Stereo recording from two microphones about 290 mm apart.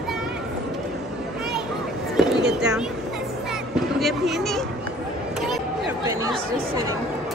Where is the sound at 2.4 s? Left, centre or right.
Centre.